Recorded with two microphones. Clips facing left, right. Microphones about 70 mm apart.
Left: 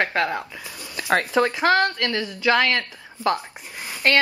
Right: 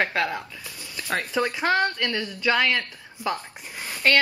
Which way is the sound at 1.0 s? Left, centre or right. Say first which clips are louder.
Left 7 dB; left.